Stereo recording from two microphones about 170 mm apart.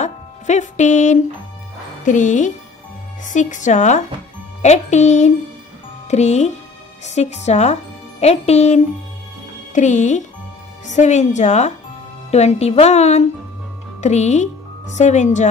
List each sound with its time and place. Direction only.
0.0 s a woman's voice: 45° left (ahead or behind)